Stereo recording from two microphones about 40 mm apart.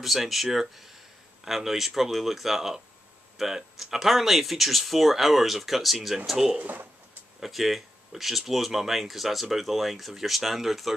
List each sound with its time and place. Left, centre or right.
0.0 s speech: centre
6.6 s speech: right
7.3 s speech: centre